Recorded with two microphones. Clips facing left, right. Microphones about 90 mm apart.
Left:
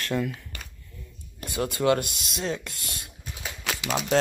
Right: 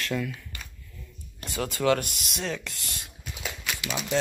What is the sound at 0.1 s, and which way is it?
Speech, 30° left (ahead or behind).